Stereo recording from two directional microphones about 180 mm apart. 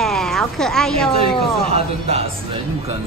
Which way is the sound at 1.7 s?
35° right (ahead or behind).